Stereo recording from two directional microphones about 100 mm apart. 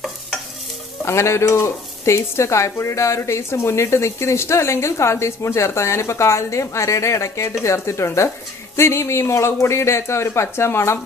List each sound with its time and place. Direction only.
1.0 s speech: 30° left (ahead or behind)